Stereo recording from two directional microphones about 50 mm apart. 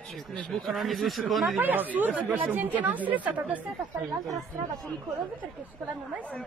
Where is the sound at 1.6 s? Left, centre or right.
Right.